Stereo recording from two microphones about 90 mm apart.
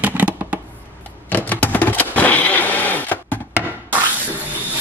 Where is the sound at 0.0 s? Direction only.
20° right (ahead or behind).